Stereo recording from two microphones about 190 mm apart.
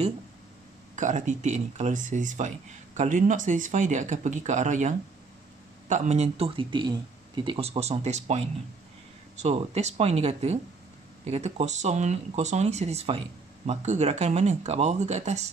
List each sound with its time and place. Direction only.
0.9 s speech: 40° right (ahead or behind)